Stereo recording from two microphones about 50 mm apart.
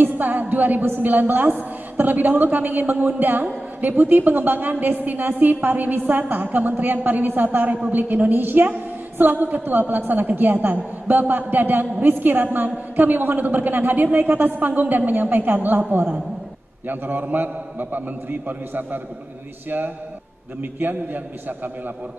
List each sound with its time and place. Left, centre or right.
0.0 s music: right
0.8 s a woman's voice: right
16.8 s a woman's voice: right
20.8 s a woman's voice: right